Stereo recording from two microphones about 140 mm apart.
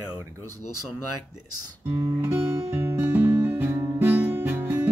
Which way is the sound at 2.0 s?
20° right (ahead or behind).